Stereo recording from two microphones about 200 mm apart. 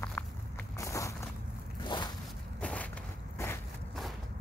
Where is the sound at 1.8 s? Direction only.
20° left (ahead or behind).